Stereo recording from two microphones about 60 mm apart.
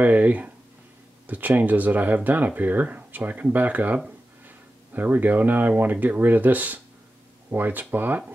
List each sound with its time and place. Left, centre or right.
0.0 s speech: right